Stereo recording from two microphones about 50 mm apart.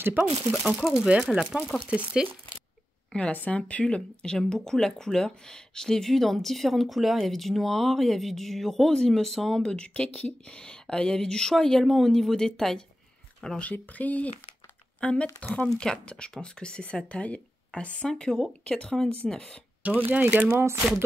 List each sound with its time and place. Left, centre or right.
0.5 s speech: centre
1.3 s speech: centre
3.1 s speech: left
3.8 s speech: centre
9.7 s a woman's voice: left
13.6 s speech: left
18.0 s a woman's voice: centre
19.8 s speech: right
20.4 s speech: right